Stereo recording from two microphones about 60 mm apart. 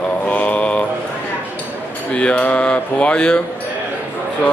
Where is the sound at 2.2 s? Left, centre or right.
Left.